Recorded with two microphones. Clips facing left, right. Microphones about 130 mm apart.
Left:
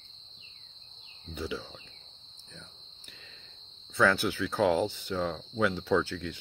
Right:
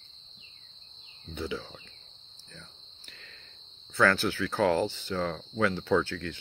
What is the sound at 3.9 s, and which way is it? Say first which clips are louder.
Speech: right 1 dB; 10° left (ahead or behind).